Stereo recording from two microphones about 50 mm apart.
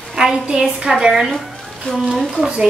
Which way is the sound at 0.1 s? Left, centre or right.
Centre.